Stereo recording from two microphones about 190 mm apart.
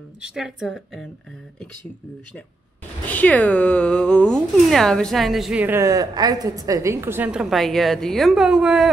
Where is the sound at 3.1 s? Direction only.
10° left (ahead or behind).